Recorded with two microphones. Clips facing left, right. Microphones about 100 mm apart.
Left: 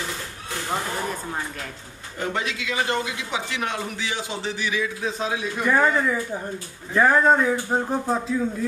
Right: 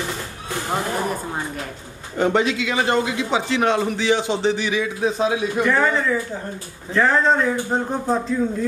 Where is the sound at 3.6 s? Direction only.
85° right.